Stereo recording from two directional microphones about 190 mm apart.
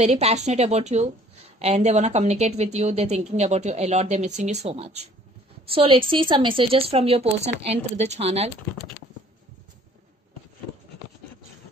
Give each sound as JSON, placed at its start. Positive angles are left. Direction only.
{"t": 0.0, "sound": "a woman's voice", "side_deg": -35}